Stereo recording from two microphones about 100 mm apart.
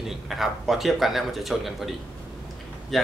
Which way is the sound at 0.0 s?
Centre (ahead or behind).